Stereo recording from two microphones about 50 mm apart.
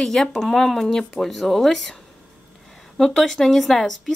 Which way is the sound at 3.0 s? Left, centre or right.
Centre.